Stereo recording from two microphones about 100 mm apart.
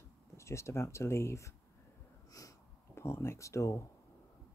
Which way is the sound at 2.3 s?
35° left (ahead or behind).